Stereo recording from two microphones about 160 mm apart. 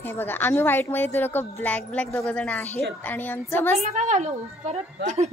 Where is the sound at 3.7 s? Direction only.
45° right (ahead or behind).